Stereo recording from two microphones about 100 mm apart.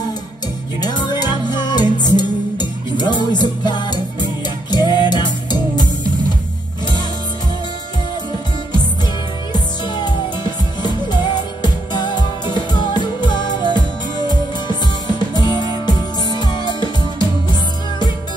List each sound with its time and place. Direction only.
0.7 s music: 45° left (ahead or behind)
9.5 s music: 45° left (ahead or behind)